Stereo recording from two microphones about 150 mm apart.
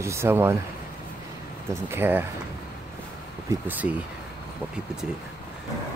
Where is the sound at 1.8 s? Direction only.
15° right (ahead or behind).